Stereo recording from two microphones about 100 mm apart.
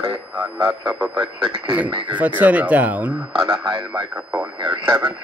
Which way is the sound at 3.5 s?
60° right (ahead or behind).